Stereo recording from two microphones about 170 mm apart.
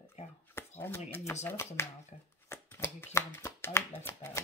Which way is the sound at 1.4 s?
15° left (ahead or behind).